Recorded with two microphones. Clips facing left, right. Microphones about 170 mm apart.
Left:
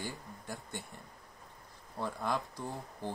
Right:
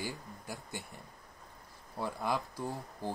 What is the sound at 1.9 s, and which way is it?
Speech, 10° right (ahead or behind).